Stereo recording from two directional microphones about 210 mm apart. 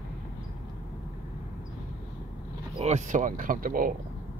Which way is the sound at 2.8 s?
35° right (ahead or behind).